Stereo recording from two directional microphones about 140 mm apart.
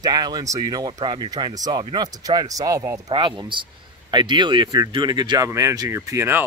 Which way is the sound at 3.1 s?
35° right (ahead or behind).